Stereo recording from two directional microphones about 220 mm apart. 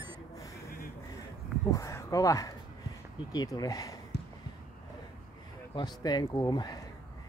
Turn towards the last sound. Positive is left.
turn(degrees=15)  # may be behind; listen again after turning